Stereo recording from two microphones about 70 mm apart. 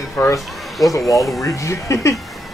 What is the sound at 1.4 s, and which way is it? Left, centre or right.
Speech, left.